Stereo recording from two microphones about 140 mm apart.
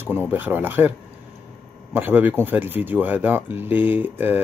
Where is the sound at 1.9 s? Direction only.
15° right (ahead or behind).